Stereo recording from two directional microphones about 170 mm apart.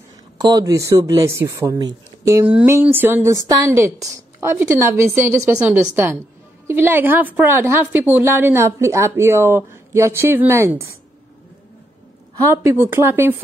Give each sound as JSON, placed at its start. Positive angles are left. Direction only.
{"t": 0.4, "sound": "a woman's voice", "side_deg": -25}
{"t": 12.4, "sound": "a woman's voice", "side_deg": -15}